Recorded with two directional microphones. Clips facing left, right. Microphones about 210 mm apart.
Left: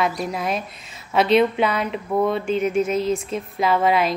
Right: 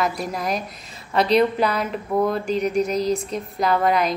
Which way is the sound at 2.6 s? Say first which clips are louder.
Even; 35° right (ahead or behind).